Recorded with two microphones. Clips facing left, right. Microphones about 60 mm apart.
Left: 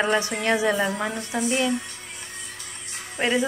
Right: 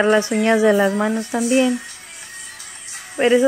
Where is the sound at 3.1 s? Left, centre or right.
Centre.